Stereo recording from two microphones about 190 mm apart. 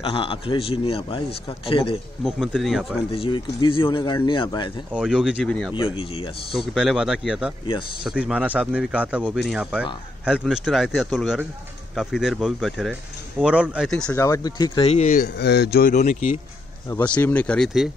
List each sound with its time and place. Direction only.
0.0 s speech: 30° left (ahead or behind)
2.2 s a man's voice: centre (ahead or behind)
3.1 s speech: 25° left (ahead or behind)
4.9 s a man's voice: 5° right (ahead or behind)
5.8 s speech: 30° left (ahead or behind)
6.7 s a man's voice: centre (ahead or behind)
14.1 s speech: 15° left (ahead or behind)
14.9 s speech: 40° left (ahead or behind)
15.2 s a man's voice: 60° left (ahead or behind); by 16.3 s 45° left (ahead or behind)
16.9 s speech: 10° left (ahead or behind)